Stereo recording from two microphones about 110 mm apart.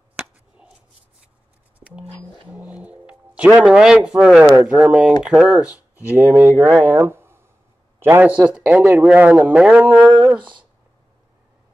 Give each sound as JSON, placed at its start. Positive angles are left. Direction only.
{"t": 1.8, "sound": "a sound", "side_deg": -15}
{"t": 2.7, "sound": "music", "side_deg": -10}
{"t": 3.6, "sound": "speech", "side_deg": -5}
{"t": 10.3, "sound": "speech", "side_deg": -45}